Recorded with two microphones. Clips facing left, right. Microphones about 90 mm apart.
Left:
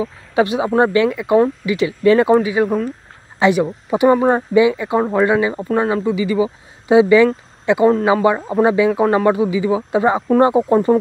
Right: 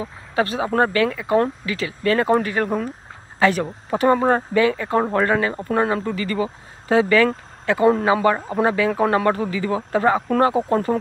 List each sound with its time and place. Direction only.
0.0 s speech: 20° left (ahead or behind)
2.3 s speech: 5° left (ahead or behind)